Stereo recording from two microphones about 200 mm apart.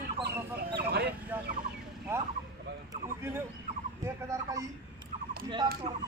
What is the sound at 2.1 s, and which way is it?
A man's voice, 10° right (ahead or behind).